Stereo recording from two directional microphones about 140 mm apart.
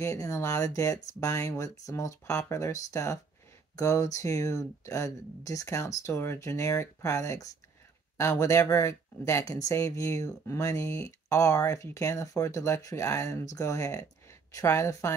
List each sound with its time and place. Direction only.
0.0 s speech: 20° left (ahead or behind)